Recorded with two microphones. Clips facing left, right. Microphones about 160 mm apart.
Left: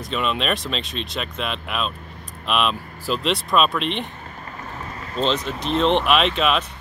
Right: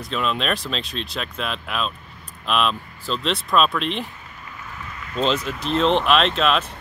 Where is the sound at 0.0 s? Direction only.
Centre (ahead or behind).